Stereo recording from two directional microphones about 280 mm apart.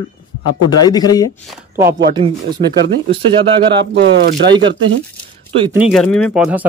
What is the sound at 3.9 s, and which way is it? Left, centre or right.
Speech, right.